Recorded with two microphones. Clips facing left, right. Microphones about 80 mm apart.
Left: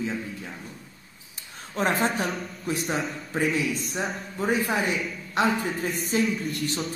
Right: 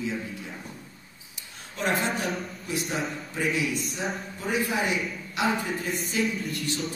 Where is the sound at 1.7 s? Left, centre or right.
Left.